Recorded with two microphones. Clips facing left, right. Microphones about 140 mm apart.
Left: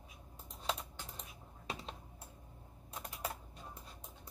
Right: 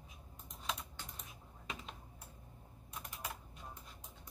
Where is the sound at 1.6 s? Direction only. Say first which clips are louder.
Left 3 dB; 35° left (ahead or behind).